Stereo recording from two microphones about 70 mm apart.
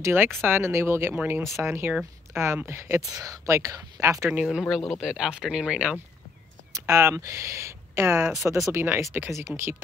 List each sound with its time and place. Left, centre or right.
0.0 s speech: right
3.1 s speech: right
4.3 s speech: centre
4.6 s speech: centre
6.7 s speech: right